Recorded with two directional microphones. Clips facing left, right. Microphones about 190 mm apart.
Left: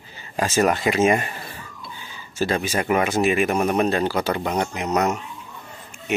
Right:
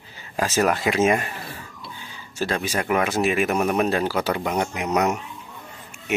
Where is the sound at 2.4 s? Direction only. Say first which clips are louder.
Left 2 dB; centre (ahead or behind).